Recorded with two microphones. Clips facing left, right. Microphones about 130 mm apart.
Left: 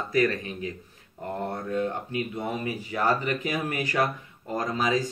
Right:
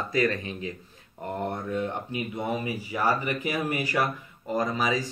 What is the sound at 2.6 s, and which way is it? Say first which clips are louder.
Speech: left 3 dB; 10° right (ahead or behind).